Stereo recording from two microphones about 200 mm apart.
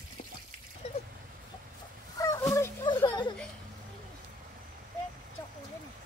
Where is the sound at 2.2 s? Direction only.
15° left (ahead or behind).